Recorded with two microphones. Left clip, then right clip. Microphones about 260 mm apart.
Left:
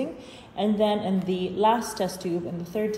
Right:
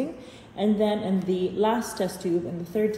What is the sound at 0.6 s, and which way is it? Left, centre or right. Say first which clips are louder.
A woman's voice: left 1 dB; left.